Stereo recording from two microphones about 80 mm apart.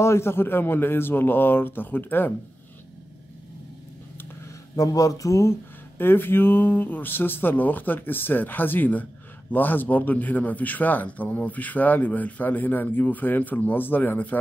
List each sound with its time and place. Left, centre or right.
0.0 s a man's voice: left
4.7 s speech: left
5.9 s a man's voice: left